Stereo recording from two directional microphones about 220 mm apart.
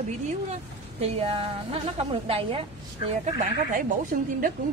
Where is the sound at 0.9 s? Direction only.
25° right (ahead or behind).